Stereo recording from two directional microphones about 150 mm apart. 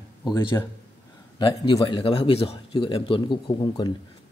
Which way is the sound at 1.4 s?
30° left (ahead or behind).